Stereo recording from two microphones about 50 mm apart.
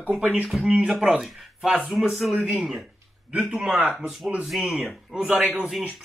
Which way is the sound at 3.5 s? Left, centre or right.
Centre.